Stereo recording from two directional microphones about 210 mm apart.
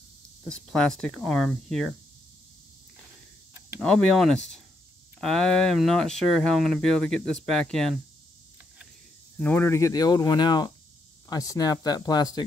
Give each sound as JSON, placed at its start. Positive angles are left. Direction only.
{"t": 0.4, "sound": "speech", "side_deg": 0}
{"t": 3.8, "sound": "speech", "side_deg": 5}
{"t": 9.4, "sound": "speech", "side_deg": 10}